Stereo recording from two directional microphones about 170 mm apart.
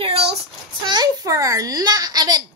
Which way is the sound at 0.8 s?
20° right (ahead or behind).